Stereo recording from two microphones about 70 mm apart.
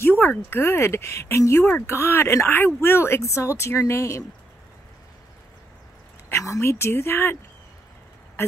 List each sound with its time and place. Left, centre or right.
0.2 s speech: left
6.2 s speech: left
8.4 s speech: left